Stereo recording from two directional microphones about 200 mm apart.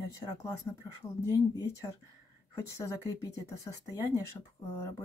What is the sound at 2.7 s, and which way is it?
Speech, 15° left (ahead or behind).